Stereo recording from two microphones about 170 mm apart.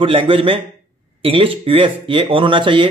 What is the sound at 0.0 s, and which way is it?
Speech, 30° right (ahead or behind).